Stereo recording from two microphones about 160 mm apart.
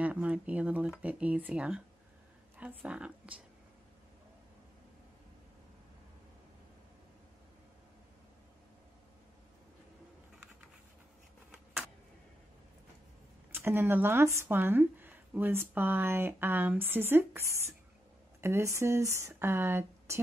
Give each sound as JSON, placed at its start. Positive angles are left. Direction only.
{"t": 0.0, "sound": "speech", "side_deg": -10}
{"t": 13.5, "sound": "speech", "side_deg": -15}